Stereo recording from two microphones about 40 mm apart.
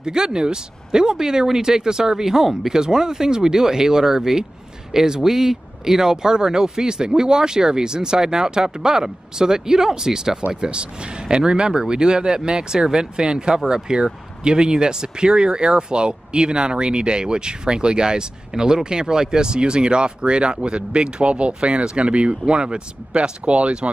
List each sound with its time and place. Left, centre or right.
0.0 s speech: centre